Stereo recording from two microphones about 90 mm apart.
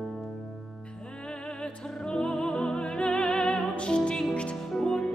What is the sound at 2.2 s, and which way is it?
Music, 10° left (ahead or behind).